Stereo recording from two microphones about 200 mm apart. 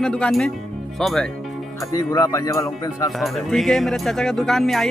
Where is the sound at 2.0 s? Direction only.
15° left (ahead or behind).